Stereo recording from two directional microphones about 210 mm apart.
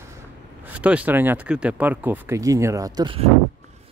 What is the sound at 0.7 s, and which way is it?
Speech, 5° right (ahead or behind).